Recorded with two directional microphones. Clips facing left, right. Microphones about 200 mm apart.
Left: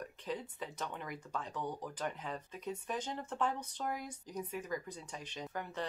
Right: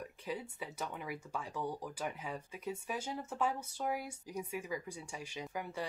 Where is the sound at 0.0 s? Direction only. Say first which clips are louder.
Even; 10° right (ahead or behind).